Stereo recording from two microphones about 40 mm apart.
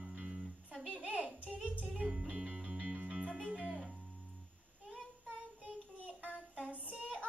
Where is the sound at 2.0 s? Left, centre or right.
Centre.